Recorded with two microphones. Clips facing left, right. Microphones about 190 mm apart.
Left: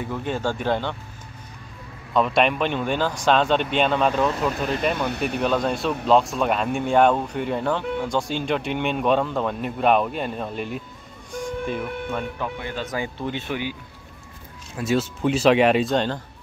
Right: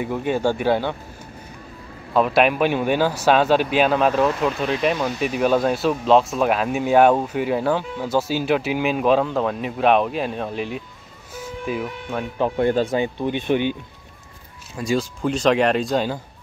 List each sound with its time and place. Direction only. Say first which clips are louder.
0.0 s speech: right 5 dB; 10° right (ahead or behind)
2.1 s speech: right 3 dB; 5° right (ahead or behind)
4.9 s speech: right 2 dB; 60° left (ahead or behind)
5.4 s speech: right 5 dB; 5° right (ahead or behind)
11.3 s music: even; 5° right (ahead or behind)
12.5 s speech: right 12 dB; 50° right (ahead or behind)
12.8 s speech: right 6 dB; 20° right (ahead or behind)
14.8 s speech: even; 5° left (ahead or behind)